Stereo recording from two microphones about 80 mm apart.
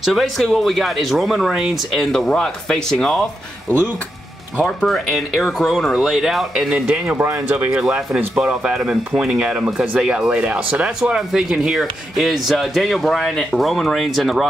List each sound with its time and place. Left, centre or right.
0.0 s speech: centre
4.8 s speech: centre
7.2 s speech: right
7.7 s speech: centre